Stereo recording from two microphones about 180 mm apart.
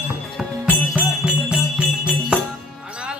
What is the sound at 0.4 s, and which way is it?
Music, 5° right (ahead or behind).